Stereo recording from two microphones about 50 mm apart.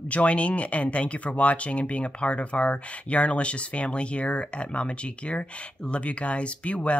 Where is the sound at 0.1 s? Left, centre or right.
Left.